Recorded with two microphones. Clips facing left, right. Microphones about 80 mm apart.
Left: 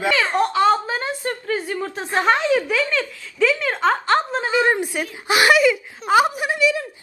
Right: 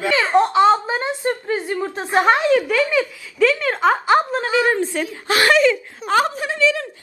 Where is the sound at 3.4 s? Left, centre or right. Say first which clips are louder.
Right 2 dB; centre.